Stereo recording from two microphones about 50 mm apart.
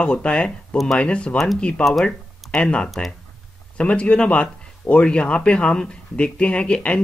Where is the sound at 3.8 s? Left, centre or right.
Left.